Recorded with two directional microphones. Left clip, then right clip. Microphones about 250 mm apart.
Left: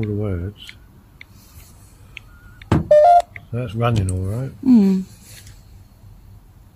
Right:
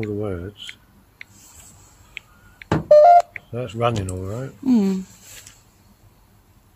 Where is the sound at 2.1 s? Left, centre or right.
Centre.